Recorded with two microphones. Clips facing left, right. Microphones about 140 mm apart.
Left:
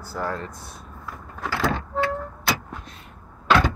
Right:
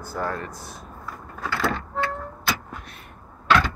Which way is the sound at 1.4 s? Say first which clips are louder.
Left 1 dB; 15° left (ahead or behind).